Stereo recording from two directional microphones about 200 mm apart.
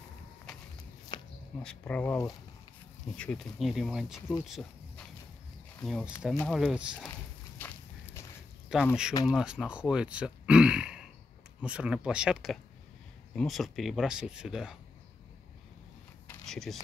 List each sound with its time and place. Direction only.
1.1 s a sound: 20° left (ahead or behind)
1.6 s speech: 5° left (ahead or behind)
6.6 s speech: 5° right (ahead or behind)
7.5 s walk: 10° left (ahead or behind)
8.7 s speech: 5° right (ahead or behind)
16.3 s a sound: centre (ahead or behind)